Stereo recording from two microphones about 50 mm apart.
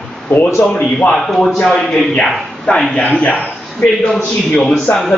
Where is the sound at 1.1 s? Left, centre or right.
Centre.